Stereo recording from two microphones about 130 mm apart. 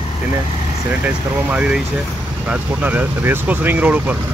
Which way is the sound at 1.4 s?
10° right (ahead or behind).